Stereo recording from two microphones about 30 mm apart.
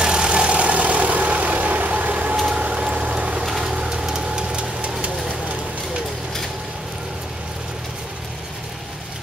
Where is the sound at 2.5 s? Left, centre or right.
Right.